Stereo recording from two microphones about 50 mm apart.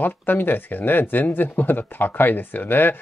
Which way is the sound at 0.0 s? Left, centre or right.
Left.